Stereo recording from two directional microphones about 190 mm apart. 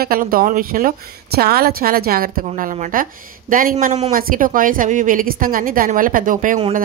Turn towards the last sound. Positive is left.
turn(degrees=-40)  # may be behind; listen again after turning